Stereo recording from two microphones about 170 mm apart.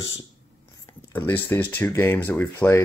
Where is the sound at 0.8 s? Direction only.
10° left (ahead or behind).